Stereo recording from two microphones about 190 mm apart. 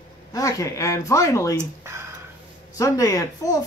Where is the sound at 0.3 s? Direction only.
15° left (ahead or behind).